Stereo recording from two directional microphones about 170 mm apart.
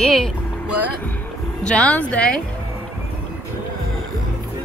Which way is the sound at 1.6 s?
5° left (ahead or behind).